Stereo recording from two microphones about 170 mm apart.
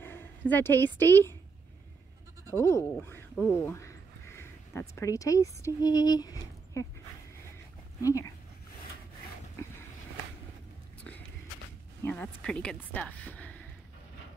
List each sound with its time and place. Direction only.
0.0 s a sound: 15° left (ahead or behind)
0.9 s speech: 15° left (ahead or behind)
2.6 s speech: 15° left (ahead or behind)
3.4 s a sound: 15° left (ahead or behind)
5.6 s a woman's voice: 20° left (ahead or behind)
8.0 s a woman's voice: 20° left (ahead or behind)
9.6 s vehicle: 15° left (ahead or behind)
12.0 s speech: 10° left (ahead or behind)